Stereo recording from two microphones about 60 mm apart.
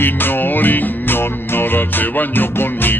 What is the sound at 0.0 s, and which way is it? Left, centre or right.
Music, left.